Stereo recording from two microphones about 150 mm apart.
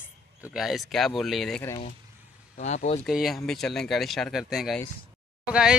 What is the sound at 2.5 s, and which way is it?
Speech, 50° left (ahead or behind).